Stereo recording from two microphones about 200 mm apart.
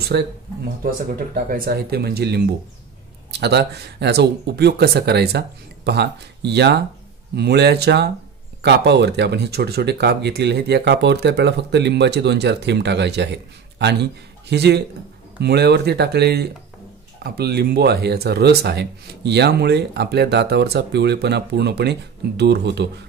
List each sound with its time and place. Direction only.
0.1 s speech: 55° right (ahead or behind)